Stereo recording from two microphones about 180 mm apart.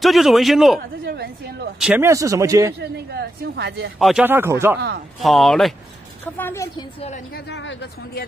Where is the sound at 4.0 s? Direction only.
5° right (ahead or behind).